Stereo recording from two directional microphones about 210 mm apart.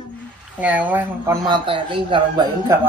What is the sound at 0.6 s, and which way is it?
Speech, 5° right (ahead or behind).